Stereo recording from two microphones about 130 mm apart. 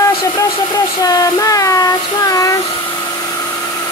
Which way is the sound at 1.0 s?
25° left (ahead or behind).